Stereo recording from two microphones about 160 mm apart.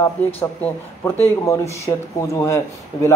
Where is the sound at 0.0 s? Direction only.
15° left (ahead or behind).